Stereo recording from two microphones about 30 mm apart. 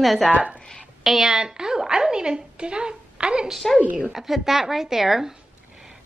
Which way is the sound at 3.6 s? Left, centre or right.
Centre.